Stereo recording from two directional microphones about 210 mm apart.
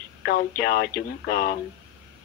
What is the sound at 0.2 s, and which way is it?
A woman's voice, 50° left (ahead or behind).